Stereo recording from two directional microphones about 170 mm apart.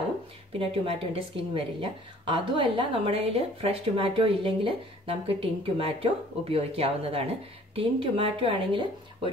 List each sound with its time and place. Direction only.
0.5 s speech: 35° right (ahead or behind)